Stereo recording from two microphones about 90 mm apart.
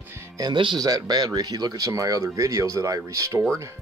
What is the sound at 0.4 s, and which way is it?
Speech, 60° right (ahead or behind).